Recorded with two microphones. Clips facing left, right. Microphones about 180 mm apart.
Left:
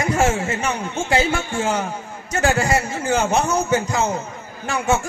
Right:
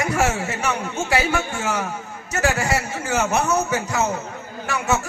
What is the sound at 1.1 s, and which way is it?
A man's voice, 30° left (ahead or behind).